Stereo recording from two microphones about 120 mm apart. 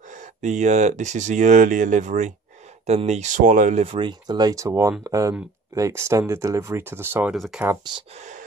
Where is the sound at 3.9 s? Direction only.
40° right (ahead or behind); by 7.3 s 15° right (ahead or behind).